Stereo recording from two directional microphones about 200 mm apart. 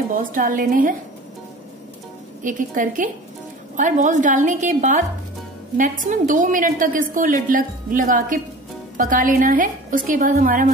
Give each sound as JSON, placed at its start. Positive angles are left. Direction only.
{"t": 0.1, "sound": "a woman's voice", "side_deg": -45}
{"t": 2.4, "sound": "a woman's voice", "side_deg": -40}